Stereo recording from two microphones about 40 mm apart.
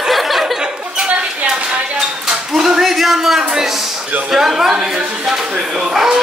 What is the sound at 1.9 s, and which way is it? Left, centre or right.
Speech, centre.